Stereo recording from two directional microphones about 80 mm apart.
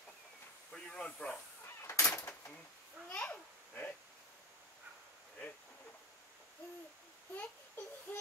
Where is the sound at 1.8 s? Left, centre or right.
Left.